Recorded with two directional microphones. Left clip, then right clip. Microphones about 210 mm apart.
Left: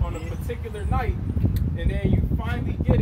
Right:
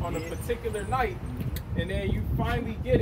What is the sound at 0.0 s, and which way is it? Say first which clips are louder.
Vehicle: right 2 dB; centre (ahead or behind).